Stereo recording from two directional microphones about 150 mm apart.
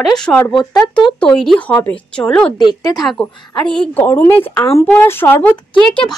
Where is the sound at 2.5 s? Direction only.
30° left (ahead or behind).